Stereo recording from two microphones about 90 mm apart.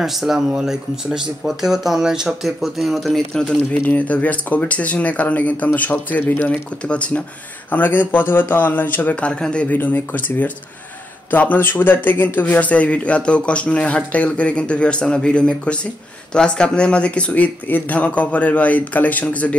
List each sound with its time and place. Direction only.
0.0 s speech: 5° right (ahead or behind)
3.8 s a man's voice: 20° left (ahead or behind)